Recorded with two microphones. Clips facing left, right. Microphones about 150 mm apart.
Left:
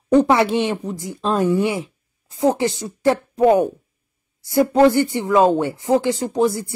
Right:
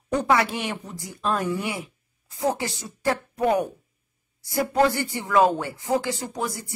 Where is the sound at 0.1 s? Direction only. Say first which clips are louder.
Left 8 dB; 25° left (ahead or behind).